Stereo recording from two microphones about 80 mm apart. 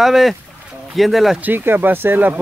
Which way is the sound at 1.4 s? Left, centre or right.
Right.